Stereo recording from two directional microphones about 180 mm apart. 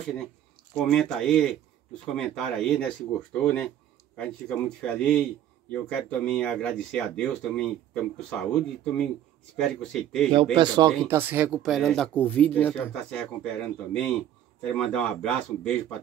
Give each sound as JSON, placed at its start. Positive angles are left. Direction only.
{"t": 0.7, "sound": "speech", "side_deg": 5}
{"t": 10.5, "sound": "speech", "side_deg": -25}
{"t": 11.1, "sound": "speech", "side_deg": -10}